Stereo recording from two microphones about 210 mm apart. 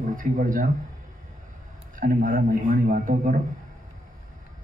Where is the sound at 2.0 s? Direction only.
40° right (ahead or behind).